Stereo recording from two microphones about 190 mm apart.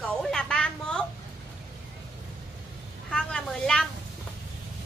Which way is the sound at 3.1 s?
5° left (ahead or behind).